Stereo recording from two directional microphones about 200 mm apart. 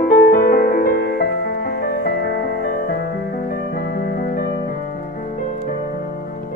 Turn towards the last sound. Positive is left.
turn(degrees=50)  # may be behind; listen again after turning